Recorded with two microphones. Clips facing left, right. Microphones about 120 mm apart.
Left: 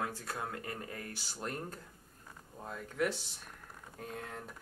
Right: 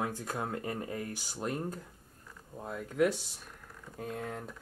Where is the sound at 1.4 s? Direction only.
10° right (ahead or behind).